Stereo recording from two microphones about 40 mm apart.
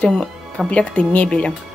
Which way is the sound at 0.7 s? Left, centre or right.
Left.